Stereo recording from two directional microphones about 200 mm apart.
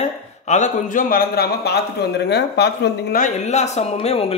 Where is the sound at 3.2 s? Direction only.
35° left (ahead or behind).